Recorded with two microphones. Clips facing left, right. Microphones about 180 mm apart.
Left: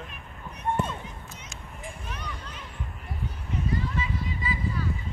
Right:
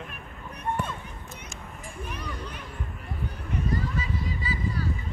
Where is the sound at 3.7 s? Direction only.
40° right (ahead or behind).